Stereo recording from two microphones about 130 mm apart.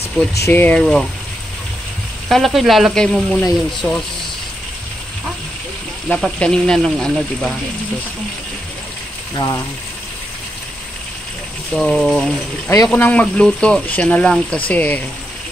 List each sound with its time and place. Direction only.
0.2 s speech: 5° left (ahead or behind)
2.2 s speech: centre (ahead or behind)
3.8 s speech: 20° left (ahead or behind)
6.0 s speech: 5° left (ahead or behind)
9.3 s speech: 25° left (ahead or behind)
11.7 s speech: 5° left (ahead or behind)
12.6 s speech: 25° left (ahead or behind)
12.9 s speech: 10° left (ahead or behind)